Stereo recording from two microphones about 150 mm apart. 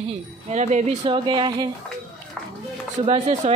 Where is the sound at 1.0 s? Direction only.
35° right (ahead or behind).